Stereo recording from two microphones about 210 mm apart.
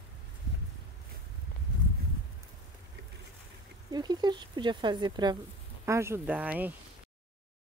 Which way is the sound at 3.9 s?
20° right (ahead or behind).